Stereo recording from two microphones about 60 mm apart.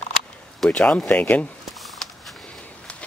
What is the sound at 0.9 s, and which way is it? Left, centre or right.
Speech, left.